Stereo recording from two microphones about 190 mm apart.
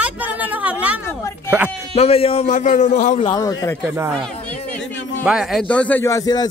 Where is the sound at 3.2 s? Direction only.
20° left (ahead or behind).